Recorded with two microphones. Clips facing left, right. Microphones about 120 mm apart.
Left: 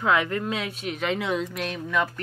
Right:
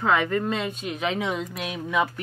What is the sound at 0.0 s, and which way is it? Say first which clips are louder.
Speech: right 1 dB; centre (ahead or behind).